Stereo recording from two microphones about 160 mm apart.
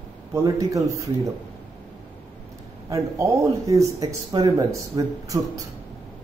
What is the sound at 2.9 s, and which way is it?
Speech, 20° right (ahead or behind).